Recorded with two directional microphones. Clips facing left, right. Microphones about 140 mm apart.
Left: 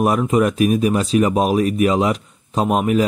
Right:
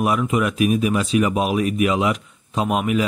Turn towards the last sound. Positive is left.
turn(degrees=40)  # may be behind; listen again after turning